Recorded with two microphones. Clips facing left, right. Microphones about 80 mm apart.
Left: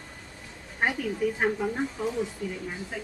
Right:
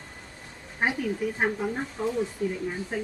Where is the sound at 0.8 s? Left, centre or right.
Centre.